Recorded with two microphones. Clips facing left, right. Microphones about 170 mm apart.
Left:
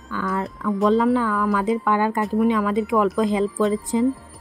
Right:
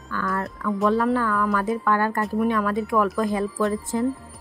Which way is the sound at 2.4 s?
20° left (ahead or behind).